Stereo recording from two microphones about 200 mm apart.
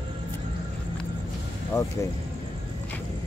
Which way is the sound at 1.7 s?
15° left (ahead or behind).